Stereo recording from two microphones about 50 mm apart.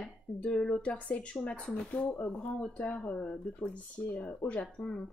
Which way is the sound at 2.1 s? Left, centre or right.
Left.